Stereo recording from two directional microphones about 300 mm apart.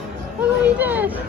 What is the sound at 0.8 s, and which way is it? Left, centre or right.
Speech, centre.